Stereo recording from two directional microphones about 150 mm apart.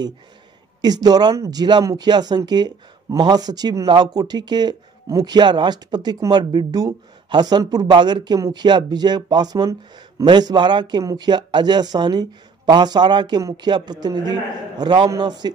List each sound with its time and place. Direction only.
0.7 s speech: 25° right (ahead or behind)